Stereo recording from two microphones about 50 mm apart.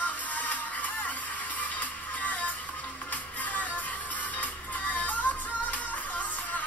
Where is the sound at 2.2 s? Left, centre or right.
Left.